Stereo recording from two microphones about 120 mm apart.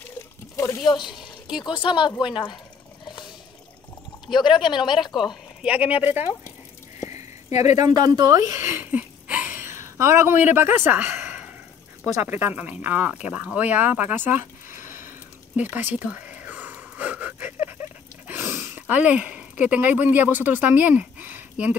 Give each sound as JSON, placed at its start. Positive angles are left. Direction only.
{"t": 0.6, "sound": "speech", "side_deg": 25}
{"t": 0.8, "sound": "speech", "side_deg": 40}
{"t": 4.3, "sound": "speech", "side_deg": 40}
{"t": 5.3, "sound": "speech", "side_deg": -10}
{"t": 7.4, "sound": "speech", "side_deg": 75}
{"t": 7.8, "sound": "a sound", "side_deg": -35}
{"t": 12.2, "sound": "speech", "side_deg": -15}
{"t": 15.7, "sound": "a sound", "side_deg": -15}